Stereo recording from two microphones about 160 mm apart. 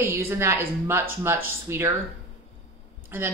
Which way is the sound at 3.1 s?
15° right (ahead or behind).